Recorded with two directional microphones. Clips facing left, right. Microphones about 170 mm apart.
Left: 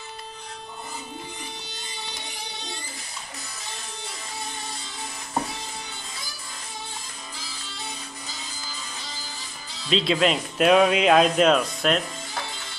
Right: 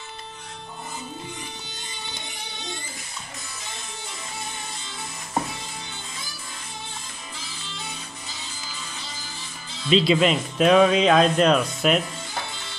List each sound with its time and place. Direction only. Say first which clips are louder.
9.8 s speech: right 3 dB; centre (ahead or behind)